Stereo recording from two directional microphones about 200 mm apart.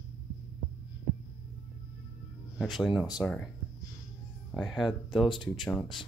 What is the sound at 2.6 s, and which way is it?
Speech, centre (ahead or behind).